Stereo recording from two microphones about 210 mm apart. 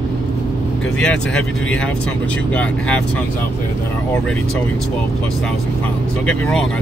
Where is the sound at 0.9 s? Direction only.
5° left (ahead or behind).